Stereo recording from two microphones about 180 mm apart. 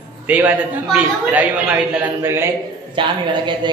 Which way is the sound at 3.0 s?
25° right (ahead or behind).